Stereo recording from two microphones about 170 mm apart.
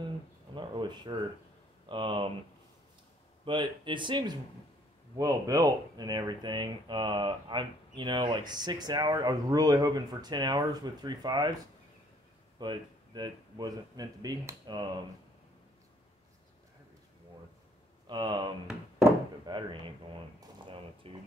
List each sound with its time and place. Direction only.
0.6 s a sound: 25° right (ahead or behind)
1.9 s speech: 30° right (ahead or behind)
3.4 s speech: 30° right (ahead or behind)
12.5 s speech: 25° right (ahead or behind)
18.0 s speech: 25° right (ahead or behind)
19.0 s a sound: 25° right (ahead or behind)